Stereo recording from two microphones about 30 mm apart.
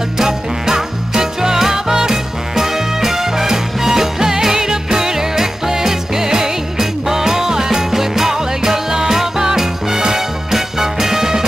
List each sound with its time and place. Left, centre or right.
0.2 s music: centre